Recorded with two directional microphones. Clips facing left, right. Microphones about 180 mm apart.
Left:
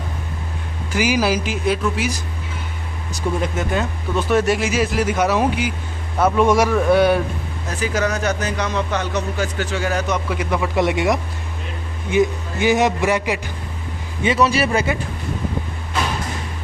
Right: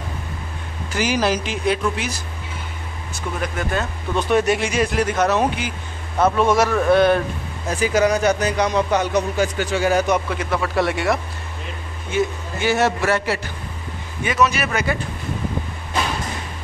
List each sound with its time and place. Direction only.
0.9 s a man's voice: 10° left (ahead or behind)
3.2 s a man's voice: 25° left (ahead or behind)
4.2 s a man's voice: centre (ahead or behind)
7.9 s speech: 10° right (ahead or behind)
10.3 s a man's voice: 10° left (ahead or behind)
14.2 s a man's voice: 30° left (ahead or behind)